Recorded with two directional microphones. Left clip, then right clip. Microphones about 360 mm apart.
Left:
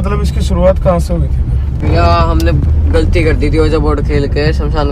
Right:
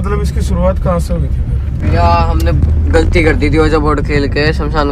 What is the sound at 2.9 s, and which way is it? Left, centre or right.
Speech, right.